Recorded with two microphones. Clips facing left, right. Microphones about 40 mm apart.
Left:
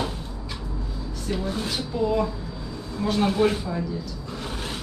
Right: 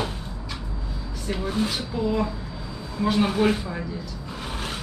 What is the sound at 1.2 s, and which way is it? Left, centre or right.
Speech, centre.